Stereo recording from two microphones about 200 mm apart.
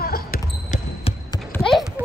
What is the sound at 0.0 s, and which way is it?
Basketball bounce, 45° left (ahead or behind).